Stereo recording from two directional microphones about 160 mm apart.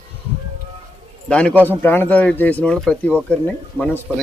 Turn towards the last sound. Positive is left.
turn(degrees=10)  # may be behind; listen again after turning